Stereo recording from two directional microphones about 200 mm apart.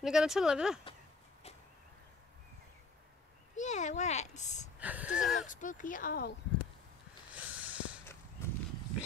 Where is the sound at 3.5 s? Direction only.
35° left (ahead or behind).